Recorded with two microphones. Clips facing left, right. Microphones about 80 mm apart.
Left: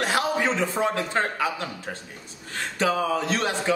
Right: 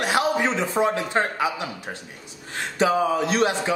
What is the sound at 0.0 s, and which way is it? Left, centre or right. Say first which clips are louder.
A man's voice: right 2 dB; centre.